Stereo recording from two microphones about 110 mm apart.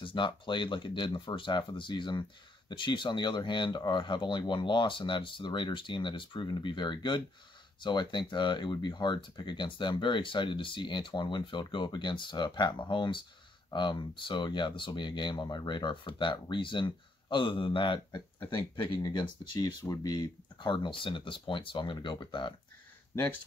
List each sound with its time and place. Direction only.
0.0 s speech: 50° left (ahead or behind)